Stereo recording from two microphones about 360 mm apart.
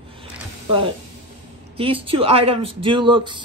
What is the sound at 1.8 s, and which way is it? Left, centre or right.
Speech, centre.